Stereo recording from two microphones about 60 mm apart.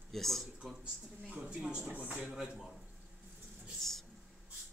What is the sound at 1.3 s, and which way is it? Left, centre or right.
Speech, centre.